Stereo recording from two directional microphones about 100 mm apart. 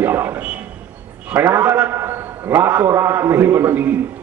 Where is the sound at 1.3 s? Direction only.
25° right (ahead or behind).